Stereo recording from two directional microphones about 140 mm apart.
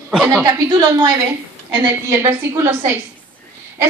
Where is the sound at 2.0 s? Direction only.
20° right (ahead or behind).